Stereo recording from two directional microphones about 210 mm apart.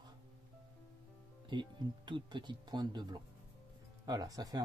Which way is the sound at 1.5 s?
20° right (ahead or behind).